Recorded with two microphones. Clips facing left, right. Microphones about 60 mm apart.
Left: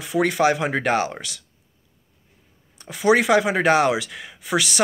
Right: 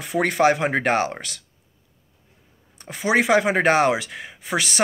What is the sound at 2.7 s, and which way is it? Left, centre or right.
A woman's voice, right.